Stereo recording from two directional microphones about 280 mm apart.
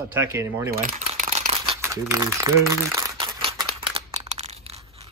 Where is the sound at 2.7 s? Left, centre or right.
Centre.